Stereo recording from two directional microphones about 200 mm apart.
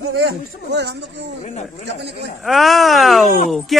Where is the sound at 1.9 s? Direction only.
60° right (ahead or behind).